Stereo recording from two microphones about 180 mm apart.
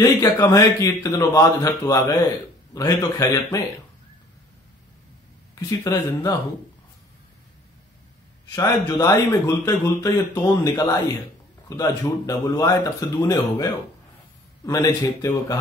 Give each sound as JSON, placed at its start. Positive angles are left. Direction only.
{"t": 0.0, "sound": "speech", "side_deg": 20}
{"t": 5.7, "sound": "speech", "side_deg": 20}
{"t": 8.5, "sound": "speech", "side_deg": 20}
{"t": 14.7, "sound": "speech", "side_deg": 20}